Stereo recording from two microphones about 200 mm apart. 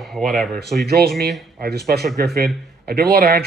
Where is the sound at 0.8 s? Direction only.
50° right (ahead or behind).